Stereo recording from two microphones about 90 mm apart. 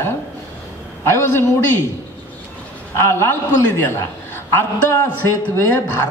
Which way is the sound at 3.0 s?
30° left (ahead or behind).